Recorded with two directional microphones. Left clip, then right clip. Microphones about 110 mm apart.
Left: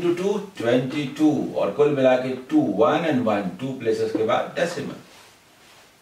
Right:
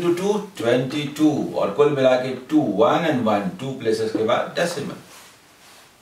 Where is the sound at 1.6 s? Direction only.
15° right (ahead or behind).